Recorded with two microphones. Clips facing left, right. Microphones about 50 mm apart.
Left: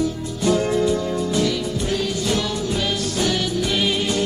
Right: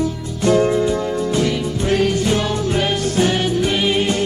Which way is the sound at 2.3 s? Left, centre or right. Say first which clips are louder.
Right 4 dB; right.